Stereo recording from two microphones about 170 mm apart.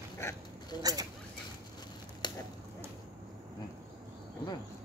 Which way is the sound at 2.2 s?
25° left (ahead or behind).